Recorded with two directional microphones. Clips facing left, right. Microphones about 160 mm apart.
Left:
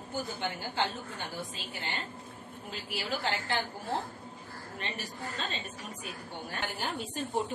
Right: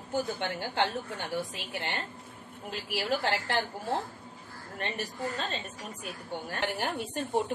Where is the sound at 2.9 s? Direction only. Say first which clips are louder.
Right 4 dB; 60° right (ahead or behind).